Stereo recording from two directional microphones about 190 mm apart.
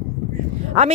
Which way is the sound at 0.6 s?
35° right (ahead or behind).